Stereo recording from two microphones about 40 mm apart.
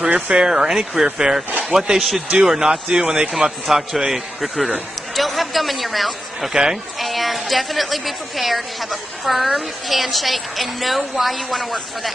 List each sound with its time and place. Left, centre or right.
0.0 s a man's voice: right
2.0 s a woman's voice: centre
2.4 s a man's voice: centre
6.5 s a man's voice: centre
7.0 s a woman's voice: centre